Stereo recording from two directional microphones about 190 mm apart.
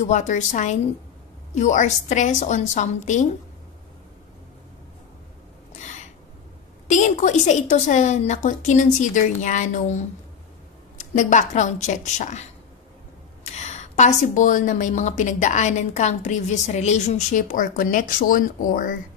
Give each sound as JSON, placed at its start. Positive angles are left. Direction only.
{"t": 0.0, "sound": "a woman's voice", "side_deg": 40}
{"t": 6.9, "sound": "a woman's voice", "side_deg": 40}
{"t": 11.1, "sound": "a woman's voice", "side_deg": 40}
{"t": 13.6, "sound": "a woman's voice", "side_deg": 35}